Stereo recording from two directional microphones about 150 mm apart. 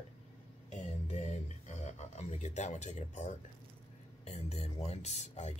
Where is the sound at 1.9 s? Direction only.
50° left (ahead or behind).